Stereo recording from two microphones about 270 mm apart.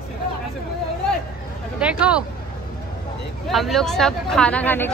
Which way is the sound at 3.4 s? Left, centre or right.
Centre.